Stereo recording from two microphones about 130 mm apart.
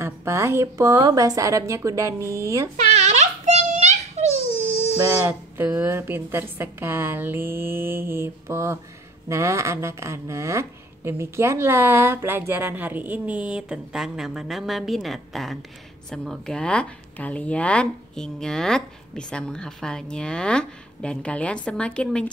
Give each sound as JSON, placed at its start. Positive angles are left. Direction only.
{"t": 0.0, "sound": "a woman's voice", "side_deg": -20}
{"t": 3.0, "sound": "a sound", "side_deg": -60}
{"t": 4.9, "sound": "a woman's voice", "side_deg": -20}